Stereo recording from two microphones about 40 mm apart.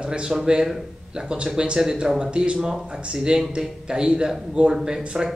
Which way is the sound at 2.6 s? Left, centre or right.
Centre.